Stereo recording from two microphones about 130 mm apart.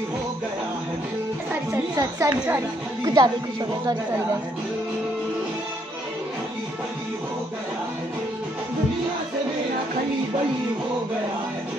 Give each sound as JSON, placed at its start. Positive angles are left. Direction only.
{"t": 2.0, "sound": "speech", "side_deg": -25}